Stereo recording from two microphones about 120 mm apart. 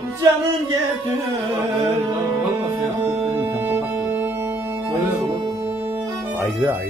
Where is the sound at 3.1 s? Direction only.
15° right (ahead or behind).